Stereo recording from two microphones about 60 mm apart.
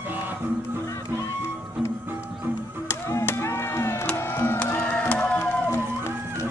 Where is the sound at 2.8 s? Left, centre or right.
Left.